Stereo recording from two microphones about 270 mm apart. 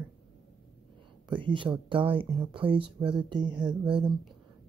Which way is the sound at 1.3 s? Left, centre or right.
Centre.